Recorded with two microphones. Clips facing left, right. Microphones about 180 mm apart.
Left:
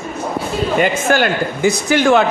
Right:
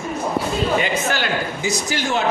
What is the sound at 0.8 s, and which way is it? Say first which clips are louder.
A man's voice: left 7 dB; 50° left (ahead or behind).